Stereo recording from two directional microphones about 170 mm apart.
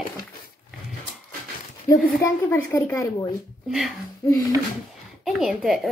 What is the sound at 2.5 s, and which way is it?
Speech, 15° left (ahead or behind).